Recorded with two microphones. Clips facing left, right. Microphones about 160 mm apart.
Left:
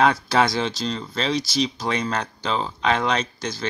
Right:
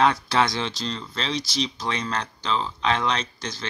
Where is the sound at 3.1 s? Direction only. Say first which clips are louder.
Left 3 dB; 5° left (ahead or behind).